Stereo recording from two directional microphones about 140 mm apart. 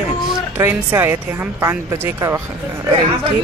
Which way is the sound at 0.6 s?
15° right (ahead or behind).